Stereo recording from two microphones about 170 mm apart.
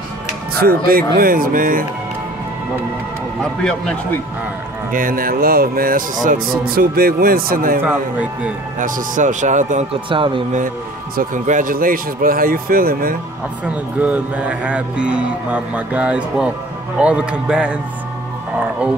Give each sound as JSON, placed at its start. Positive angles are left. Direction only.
{"t": 0.6, "sound": "speech", "side_deg": -60}
{"t": 4.9, "sound": "speech", "side_deg": -55}
{"t": 7.8, "sound": "music", "side_deg": -10}
{"t": 8.7, "sound": "speech", "side_deg": -50}
{"t": 10.0, "sound": "speech", "side_deg": -30}
{"t": 11.1, "sound": "speech", "side_deg": -50}
{"t": 14.0, "sound": "music", "side_deg": -10}